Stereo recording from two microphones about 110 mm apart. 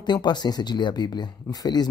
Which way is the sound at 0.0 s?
40° left (ahead or behind).